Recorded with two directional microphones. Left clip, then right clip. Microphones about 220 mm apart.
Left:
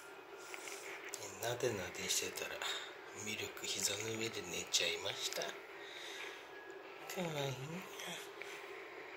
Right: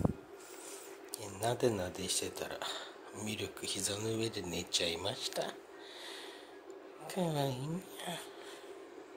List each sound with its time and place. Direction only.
1.2 s speech: 30° right (ahead or behind)
7.1 s speech: 30° right (ahead or behind)